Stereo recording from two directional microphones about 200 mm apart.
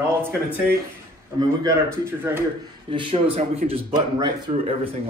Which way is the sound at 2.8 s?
25° right (ahead or behind).